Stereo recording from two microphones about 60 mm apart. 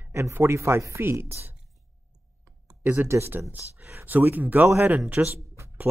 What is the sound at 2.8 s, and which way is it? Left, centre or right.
Speech, right.